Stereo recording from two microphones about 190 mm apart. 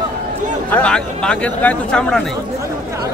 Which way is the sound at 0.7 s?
5° left (ahead or behind).